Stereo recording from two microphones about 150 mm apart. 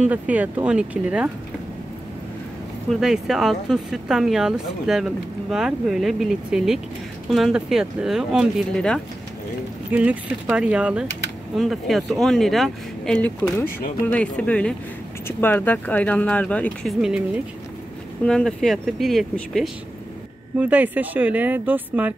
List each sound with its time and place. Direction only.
0.0 s speech: 10° right (ahead or behind)
2.9 s speech: 5° right (ahead or behind)
9.9 s speech: 10° right (ahead or behind); by 16.9 s 10° left (ahead or behind)
17.0 s speech: 5° right (ahead or behind)
20.5 s speech: 10° right (ahead or behind)